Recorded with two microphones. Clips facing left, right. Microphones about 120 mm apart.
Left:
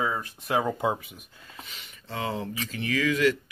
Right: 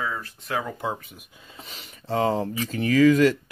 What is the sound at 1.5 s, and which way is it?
Speech, 35° right (ahead or behind).